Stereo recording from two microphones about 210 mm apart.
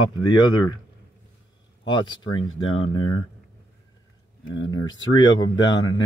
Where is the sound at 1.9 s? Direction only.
20° left (ahead or behind).